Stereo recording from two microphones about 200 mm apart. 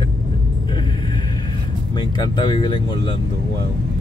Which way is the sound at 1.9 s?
20° left (ahead or behind).